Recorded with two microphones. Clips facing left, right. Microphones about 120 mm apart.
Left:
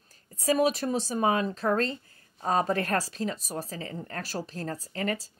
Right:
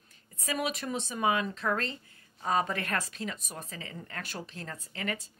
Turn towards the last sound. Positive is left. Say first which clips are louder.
# left 5 dB
turn(degrees=35)  # may be behind; listen again after turning